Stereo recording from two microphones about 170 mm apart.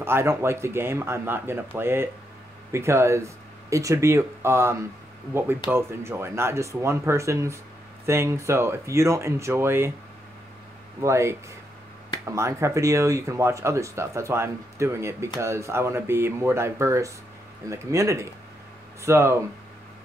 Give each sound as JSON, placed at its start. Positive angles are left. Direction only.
{"t": 0.0, "sound": "speech", "side_deg": -15}
{"t": 11.0, "sound": "speech", "side_deg": -15}